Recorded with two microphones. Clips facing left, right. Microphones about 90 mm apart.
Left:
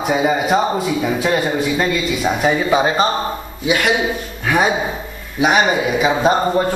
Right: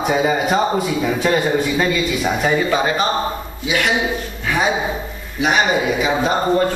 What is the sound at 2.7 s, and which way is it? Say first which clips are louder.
Speech: left 3 dB; 20° left (ahead or behind).